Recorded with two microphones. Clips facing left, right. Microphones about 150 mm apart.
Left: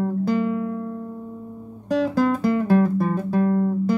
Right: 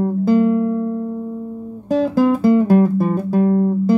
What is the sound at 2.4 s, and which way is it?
Music, 25° right (ahead or behind).